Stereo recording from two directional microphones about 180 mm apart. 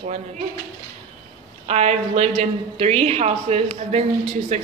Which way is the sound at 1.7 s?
35° right (ahead or behind).